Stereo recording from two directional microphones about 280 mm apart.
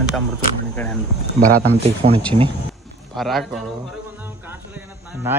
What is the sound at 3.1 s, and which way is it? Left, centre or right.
Speech, centre.